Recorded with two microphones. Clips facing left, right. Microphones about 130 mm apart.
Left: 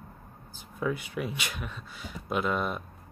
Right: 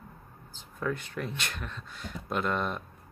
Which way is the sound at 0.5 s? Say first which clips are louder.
Left 2 dB; 10° left (ahead or behind).